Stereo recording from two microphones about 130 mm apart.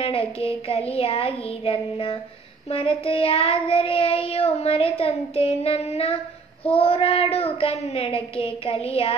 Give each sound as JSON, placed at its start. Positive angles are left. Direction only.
{"t": 0.0, "sound": "child singing", "side_deg": 45}